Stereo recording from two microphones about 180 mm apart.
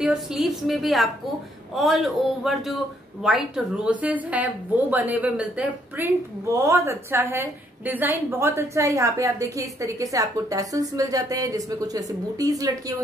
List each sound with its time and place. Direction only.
0.0 s a woman's voice: 5° right (ahead or behind); by 12.9 s 20° right (ahead or behind)